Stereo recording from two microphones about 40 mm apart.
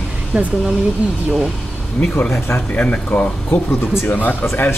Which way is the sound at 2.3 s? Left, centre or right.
Left.